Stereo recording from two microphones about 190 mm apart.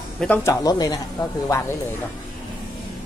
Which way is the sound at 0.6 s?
20° left (ahead or behind).